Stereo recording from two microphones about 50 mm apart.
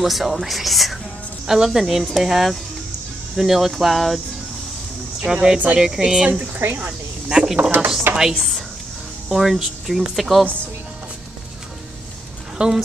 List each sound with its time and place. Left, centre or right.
0.0 s speech: centre
5.2 s speech: centre
6.6 s speech: right
7.2 s speech: centre
8.1 s chopping: centre
9.3 s speech: centre
12.5 s speech: centre